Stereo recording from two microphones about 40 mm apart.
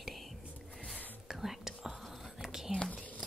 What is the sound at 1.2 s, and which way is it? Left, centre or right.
Whispering, centre.